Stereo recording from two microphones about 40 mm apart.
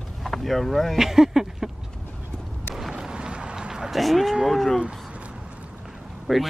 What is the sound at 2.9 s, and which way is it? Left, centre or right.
Vehicle, centre.